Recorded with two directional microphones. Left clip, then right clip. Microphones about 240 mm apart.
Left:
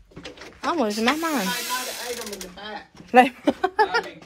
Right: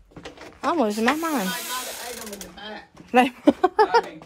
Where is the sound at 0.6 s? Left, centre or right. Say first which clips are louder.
Right 1 dB; centre.